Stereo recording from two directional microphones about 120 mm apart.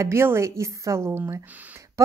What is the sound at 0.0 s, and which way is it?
A woman's voice, 20° right (ahead or behind).